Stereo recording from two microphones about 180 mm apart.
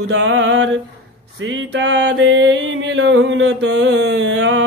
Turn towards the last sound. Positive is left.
turn(degrees=-90)